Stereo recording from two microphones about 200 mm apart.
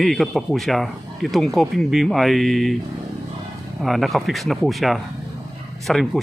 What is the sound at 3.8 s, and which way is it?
Speech, centre (ahead or behind).